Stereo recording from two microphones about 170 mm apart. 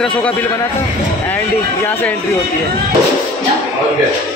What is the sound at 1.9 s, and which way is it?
Speech, 10° left (ahead or behind).